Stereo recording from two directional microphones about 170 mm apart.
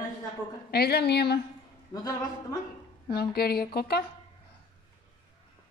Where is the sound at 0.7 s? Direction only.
70° left (ahead or behind).